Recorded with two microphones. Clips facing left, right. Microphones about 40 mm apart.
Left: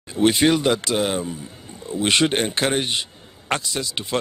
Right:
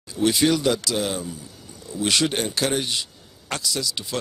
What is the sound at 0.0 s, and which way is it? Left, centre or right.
A man's voice, left.